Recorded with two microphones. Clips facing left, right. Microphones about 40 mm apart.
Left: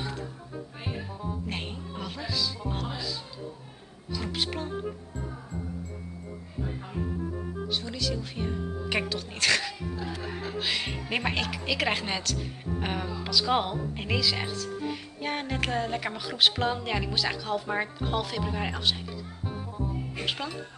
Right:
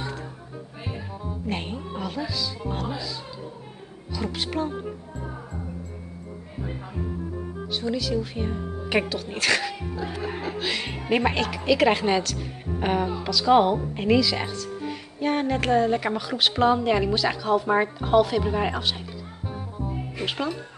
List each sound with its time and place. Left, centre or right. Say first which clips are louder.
1.1 s speech: right 4 dB; centre
7.6 s speech: right 5 dB; centre
10.0 s speech: right 8 dB; right
10.6 s speech: right 2 dB; centre
13.3 s speech: right 8 dB; centre
20.2 s speech: right 5 dB; centre